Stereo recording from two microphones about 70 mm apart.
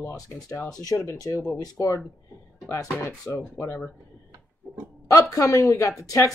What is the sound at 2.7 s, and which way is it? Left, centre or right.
Speech, left.